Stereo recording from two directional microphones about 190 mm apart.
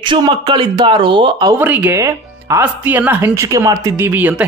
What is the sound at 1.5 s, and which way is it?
Speech, 10° right (ahead or behind).